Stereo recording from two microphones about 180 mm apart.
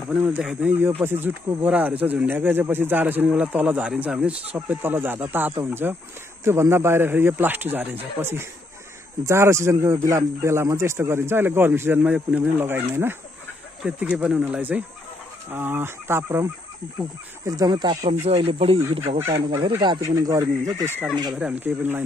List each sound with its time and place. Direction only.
0.1 s speech: 10° right (ahead or behind)
17.5 s speech: 20° right (ahead or behind)
18.2 s speech: 35° right (ahead or behind); by 22.0 s 10° right (ahead or behind)